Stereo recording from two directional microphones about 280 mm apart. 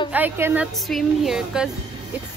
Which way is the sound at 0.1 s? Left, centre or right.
Centre.